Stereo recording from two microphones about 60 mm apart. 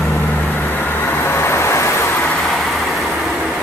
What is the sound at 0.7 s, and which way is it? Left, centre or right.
Music, left.